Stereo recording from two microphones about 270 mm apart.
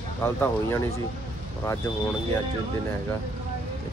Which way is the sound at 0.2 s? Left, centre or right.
Centre.